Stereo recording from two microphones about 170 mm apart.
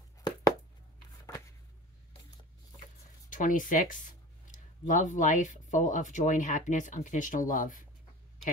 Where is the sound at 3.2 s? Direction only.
50° left (ahead or behind).